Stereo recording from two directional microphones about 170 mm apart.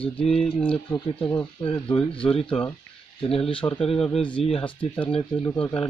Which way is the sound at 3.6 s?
10° left (ahead or behind).